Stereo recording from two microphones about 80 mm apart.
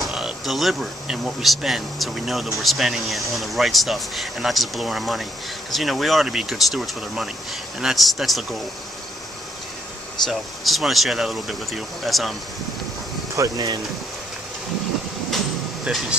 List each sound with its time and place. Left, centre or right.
0.0 s speech: centre
10.2 s speech: centre
13.4 s speech: right
15.3 s air conditioning: centre